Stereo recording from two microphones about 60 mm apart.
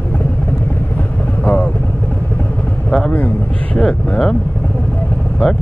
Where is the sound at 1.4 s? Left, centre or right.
Left.